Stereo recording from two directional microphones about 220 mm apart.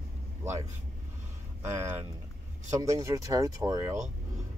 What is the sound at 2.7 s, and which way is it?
Speech, 15° right (ahead or behind).